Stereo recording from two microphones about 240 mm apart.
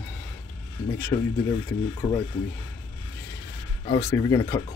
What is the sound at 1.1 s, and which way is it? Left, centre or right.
Speech, centre.